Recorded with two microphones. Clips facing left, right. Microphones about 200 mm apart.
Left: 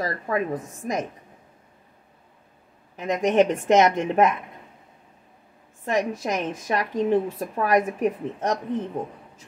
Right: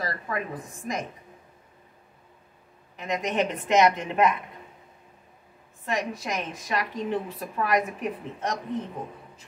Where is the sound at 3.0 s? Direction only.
45° left (ahead or behind).